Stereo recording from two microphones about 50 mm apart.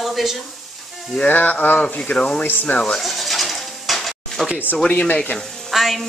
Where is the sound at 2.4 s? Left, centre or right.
Left.